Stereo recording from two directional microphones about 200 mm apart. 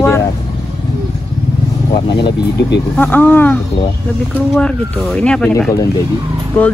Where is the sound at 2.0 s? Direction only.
25° left (ahead or behind).